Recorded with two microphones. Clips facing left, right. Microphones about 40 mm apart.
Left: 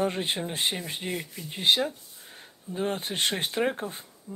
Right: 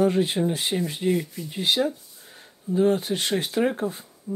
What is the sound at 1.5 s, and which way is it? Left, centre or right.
Speech, left.